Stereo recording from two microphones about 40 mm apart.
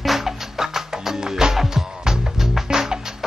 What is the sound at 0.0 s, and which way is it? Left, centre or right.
Music, centre.